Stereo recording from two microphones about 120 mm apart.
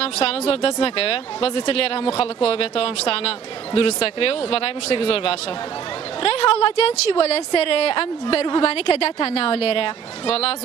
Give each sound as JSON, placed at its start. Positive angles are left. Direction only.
{"t": 0.0, "sound": "a woman's voice", "side_deg": 55}